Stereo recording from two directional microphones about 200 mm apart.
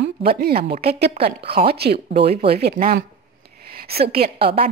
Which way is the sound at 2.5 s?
50° right (ahead or behind).